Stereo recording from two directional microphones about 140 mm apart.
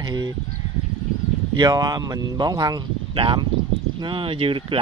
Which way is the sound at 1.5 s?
30° right (ahead or behind).